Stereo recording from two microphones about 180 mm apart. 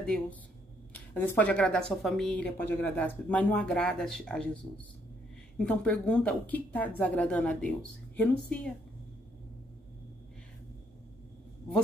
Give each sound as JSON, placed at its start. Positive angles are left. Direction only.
{"t": 0.0, "sound": "speech", "side_deg": 5}